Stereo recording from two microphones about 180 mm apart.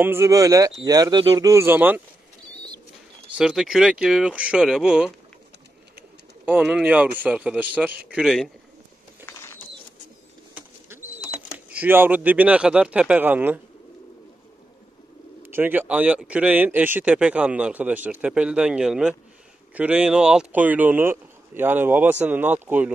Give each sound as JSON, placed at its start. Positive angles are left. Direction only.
{"t": 0.0, "sound": "speech", "side_deg": -15}
{"t": 3.3, "sound": "speech", "side_deg": -5}
{"t": 6.4, "sound": "speech", "side_deg": -5}
{"t": 9.2, "sound": "bird", "side_deg": 15}
{"t": 10.5, "sound": "pigeon", "side_deg": -10}
{"t": 15.4, "sound": "speech", "side_deg": -10}